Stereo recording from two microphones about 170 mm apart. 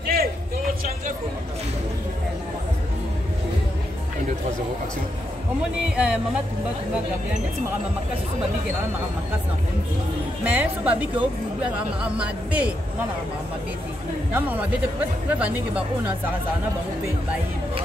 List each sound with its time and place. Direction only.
0.0 s a sound: 65° right (ahead or behind)
5.9 s speech: 5° right (ahead or behind)
10.4 s speech: 10° right (ahead or behind)
14.3 s speech: 10° right (ahead or behind)